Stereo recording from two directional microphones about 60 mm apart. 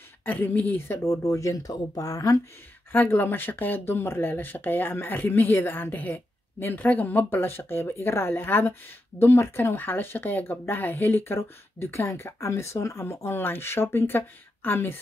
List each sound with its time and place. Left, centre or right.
0.2 s a woman's voice: left
0.7 s speech: left
2.9 s speech: left